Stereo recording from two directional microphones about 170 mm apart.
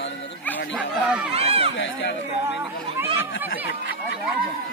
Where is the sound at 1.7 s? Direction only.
90° left.